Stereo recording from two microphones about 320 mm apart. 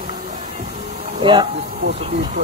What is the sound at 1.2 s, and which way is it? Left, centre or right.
Speech, centre.